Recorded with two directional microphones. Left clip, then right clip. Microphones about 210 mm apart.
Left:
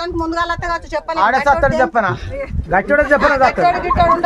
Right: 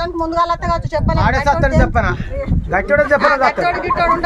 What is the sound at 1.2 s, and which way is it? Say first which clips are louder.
Speech: left 4 dB; 30° left (ahead or behind).